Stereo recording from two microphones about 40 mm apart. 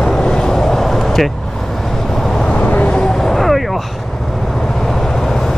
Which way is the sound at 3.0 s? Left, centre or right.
Centre.